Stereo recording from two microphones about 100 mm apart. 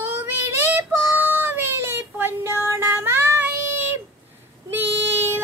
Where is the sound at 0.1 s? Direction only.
25° right (ahead or behind).